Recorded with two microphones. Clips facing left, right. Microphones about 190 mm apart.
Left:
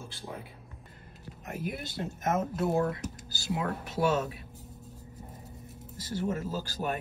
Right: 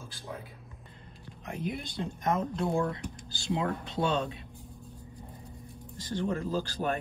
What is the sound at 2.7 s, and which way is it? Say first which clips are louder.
Speech: left 3 dB; 40° left (ahead or behind).